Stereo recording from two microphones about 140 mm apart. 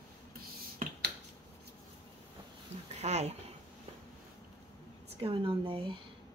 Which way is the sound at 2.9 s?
55° right (ahead or behind).